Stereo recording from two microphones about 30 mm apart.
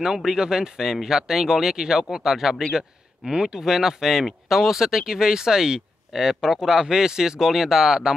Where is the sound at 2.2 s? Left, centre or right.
Centre.